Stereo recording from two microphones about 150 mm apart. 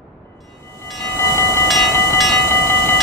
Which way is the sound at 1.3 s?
20° left (ahead or behind).